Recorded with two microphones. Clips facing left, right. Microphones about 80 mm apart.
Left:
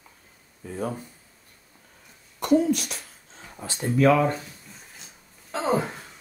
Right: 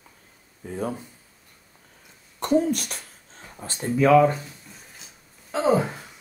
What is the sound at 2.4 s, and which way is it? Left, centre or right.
Speech, right.